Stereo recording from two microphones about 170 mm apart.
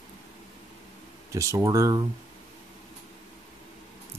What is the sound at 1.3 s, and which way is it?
Speech, 20° right (ahead or behind).